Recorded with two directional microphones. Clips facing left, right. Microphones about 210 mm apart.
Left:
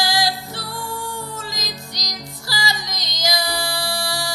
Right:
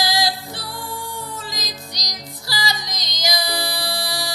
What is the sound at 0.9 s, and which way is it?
Music, 15° right (ahead or behind).